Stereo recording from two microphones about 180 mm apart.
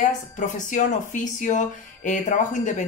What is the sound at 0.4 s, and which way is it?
A woman's voice, 45° left (ahead or behind).